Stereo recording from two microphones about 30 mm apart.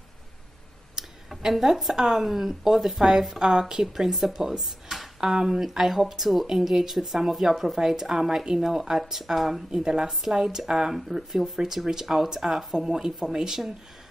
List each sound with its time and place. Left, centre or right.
1.6 s speech: centre
3.3 s speech: right
3.9 s speech: centre
5.3 s speech: centre
5.6 s speech: centre
9.7 s speech: right